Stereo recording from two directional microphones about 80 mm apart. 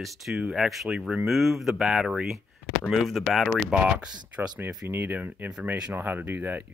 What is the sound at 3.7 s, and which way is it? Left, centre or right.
Speech, centre.